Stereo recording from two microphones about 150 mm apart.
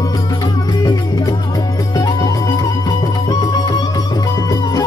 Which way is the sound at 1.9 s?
25° left (ahead or behind).